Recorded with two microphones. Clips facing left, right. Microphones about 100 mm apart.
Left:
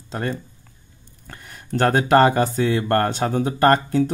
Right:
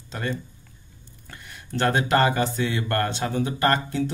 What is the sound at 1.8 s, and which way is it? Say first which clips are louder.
Speech: left 5 dB; 40° left (ahead or behind).